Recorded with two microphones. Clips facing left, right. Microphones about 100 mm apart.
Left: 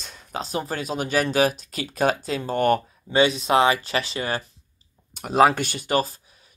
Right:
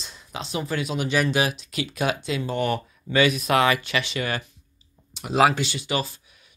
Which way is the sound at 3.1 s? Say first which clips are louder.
Left 1 dB; 30° left (ahead or behind).